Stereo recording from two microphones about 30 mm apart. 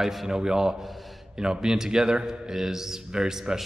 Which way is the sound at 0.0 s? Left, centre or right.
Centre.